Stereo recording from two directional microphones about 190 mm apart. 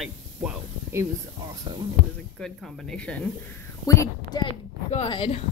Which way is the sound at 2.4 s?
Centre (ahead or behind).